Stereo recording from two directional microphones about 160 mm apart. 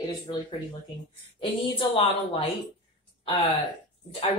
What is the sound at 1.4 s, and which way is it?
Speech, 35° left (ahead or behind).